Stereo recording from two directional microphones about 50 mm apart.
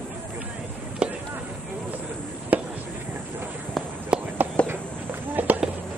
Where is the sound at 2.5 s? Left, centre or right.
Right.